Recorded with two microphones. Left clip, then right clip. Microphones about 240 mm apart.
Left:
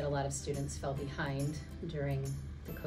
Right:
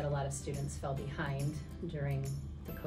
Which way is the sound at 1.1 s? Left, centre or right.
Centre.